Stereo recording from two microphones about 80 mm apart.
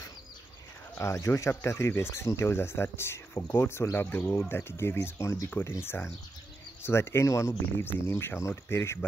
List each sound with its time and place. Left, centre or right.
0.9 s speech: left